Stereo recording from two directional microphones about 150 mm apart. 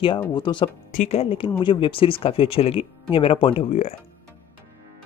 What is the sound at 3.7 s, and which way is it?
Speech, 50° left (ahead or behind).